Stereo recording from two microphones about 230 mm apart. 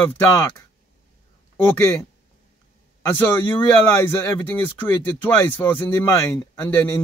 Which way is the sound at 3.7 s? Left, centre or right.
Centre.